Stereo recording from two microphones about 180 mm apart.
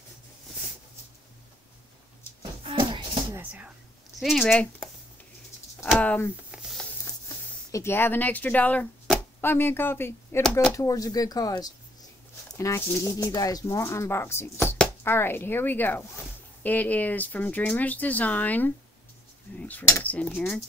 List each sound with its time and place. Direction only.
2.6 s music: 30° right (ahead or behind)
3.3 s speech: 10° right (ahead or behind)
4.2 s speech: centre (ahead or behind)
5.9 s speech: 10° left (ahead or behind)
6.5 s a sound: 5° right (ahead or behind)
7.7 s speech: 15° left (ahead or behind)